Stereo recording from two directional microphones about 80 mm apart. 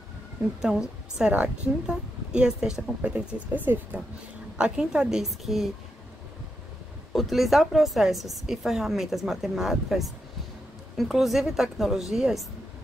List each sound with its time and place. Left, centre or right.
0.6 s speech: centre
3.6 s speech: right
4.6 s speech: centre
7.1 s a woman's voice: centre